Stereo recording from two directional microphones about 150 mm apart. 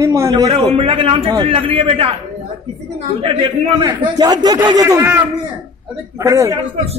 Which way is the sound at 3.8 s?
25° right (ahead or behind).